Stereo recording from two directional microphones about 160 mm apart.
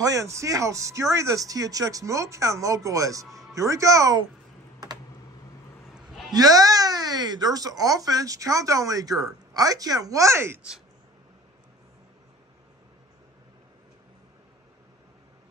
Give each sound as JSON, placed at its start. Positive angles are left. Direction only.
{"t": 0.0, "sound": "speech", "side_deg": -20}
{"t": 5.9, "sound": "a sound", "side_deg": 0}
{"t": 6.3, "sound": "speech", "side_deg": -25}